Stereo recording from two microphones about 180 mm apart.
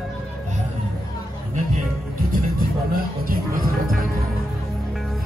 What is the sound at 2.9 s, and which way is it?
Music, 55° right (ahead or behind).